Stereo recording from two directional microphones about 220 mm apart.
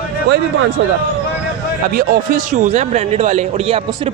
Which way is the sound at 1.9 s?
35° right (ahead or behind).